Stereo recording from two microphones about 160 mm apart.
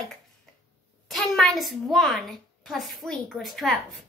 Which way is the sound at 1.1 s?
5° left (ahead or behind).